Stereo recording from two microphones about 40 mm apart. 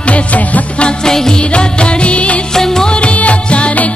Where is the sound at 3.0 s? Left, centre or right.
Left.